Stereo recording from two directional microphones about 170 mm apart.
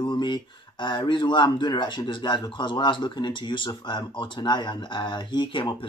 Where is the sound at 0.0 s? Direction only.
25° left (ahead or behind).